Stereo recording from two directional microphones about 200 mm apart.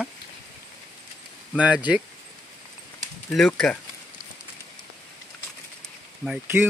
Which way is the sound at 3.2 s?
5° left (ahead or behind).